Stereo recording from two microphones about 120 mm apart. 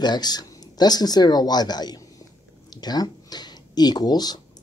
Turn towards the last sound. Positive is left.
turn(degrees=35)  # may be behind; listen again after turning